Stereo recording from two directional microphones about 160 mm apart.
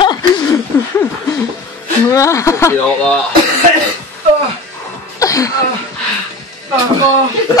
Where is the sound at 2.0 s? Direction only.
20° left (ahead or behind).